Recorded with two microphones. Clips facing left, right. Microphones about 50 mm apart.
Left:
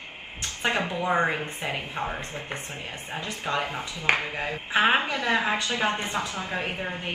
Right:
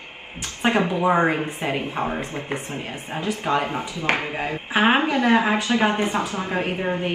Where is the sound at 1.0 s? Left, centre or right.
Centre.